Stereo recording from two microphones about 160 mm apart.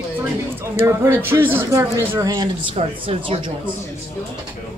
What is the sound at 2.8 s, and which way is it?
Speech, 35° right (ahead or behind).